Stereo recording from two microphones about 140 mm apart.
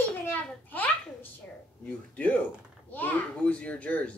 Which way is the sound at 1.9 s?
10° left (ahead or behind).